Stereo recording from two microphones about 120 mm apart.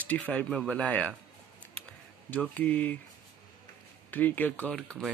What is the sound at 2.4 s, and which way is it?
Speech, 10° left (ahead or behind).